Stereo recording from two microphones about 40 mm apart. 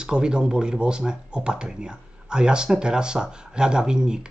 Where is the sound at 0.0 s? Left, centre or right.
Right.